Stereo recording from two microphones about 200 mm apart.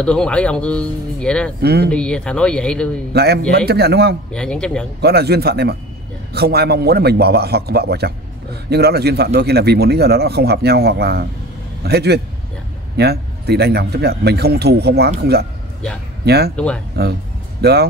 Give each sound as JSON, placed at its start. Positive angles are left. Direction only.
{"t": 0.0, "sound": "speech", "side_deg": 5}
{"t": 1.6, "sound": "a man's voice", "side_deg": -55}
{"t": 1.9, "sound": "speech", "side_deg": 5}
{"t": 3.1, "sound": "a man's voice", "side_deg": -55}
{"t": 4.3, "sound": "speech", "side_deg": 5}
{"t": 5.0, "sound": "a man's voice", "side_deg": -55}
{"t": 16.5, "sound": "speech", "side_deg": 5}
{"t": 17.6, "sound": "speech", "side_deg": -55}